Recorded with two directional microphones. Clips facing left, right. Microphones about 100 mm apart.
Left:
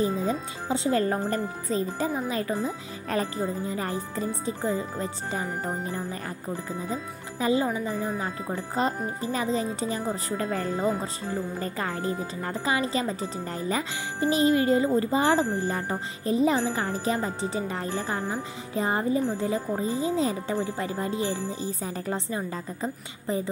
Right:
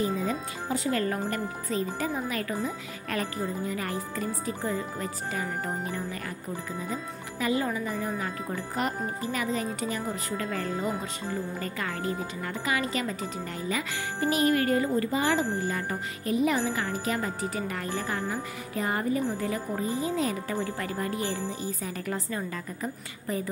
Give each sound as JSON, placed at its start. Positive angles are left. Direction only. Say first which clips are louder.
{"t": 0.2, "sound": "speech", "louder": "left 2 dB", "side_deg": 30}
{"t": 6.9, "sound": "speech", "louder": "left 2 dB", "side_deg": 30}
{"t": 14.2, "sound": "speech", "louder": "left 3 dB", "side_deg": 20}
{"t": 15.0, "sound": "speech", "louder": "left 3 dB", "side_deg": 30}